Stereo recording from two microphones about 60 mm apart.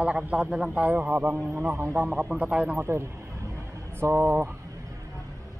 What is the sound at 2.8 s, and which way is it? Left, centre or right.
Speech, right.